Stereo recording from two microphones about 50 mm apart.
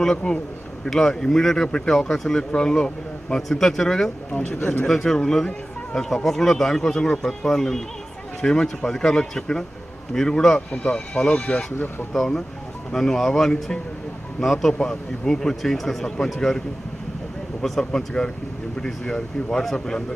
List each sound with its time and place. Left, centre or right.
0.0 s speech: centre
3.4 s speech: centre
4.3 s speech: left
4.8 s speech: centre
12.9 s speech: centre